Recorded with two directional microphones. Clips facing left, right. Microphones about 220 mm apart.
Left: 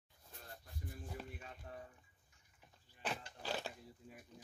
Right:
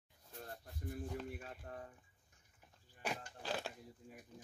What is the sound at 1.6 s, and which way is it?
Speech, 45° right (ahead or behind).